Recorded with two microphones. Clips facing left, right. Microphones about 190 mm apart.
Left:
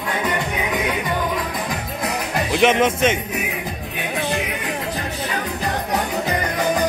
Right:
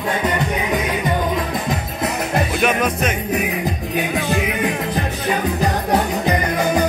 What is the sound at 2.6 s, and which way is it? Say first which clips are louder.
Music: left 6 dB; 25° left (ahead or behind).